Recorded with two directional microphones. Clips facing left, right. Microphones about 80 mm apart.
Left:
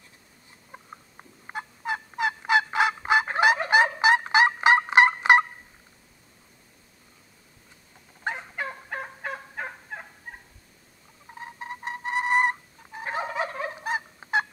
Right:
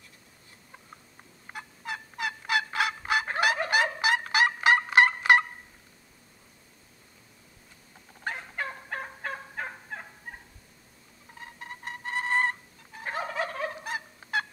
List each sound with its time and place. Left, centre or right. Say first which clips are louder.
0.7 s fowl: left 6 dB; left
8.2 s fowl: left 3 dB; centre
8.5 s fowl: left 2 dB; centre
11.3 s fowl: left 6 dB; left